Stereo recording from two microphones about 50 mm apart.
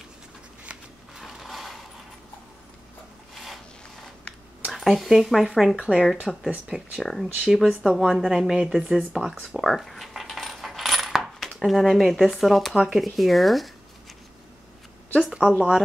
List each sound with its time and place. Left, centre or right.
0.7 s a sound: right
1.1 s mechanisms: centre
4.7 s speech: centre
5.8 s speech: right
6.3 s speech: centre
9.6 s coin: centre
11.3 s speech: centre
15.1 s speech: centre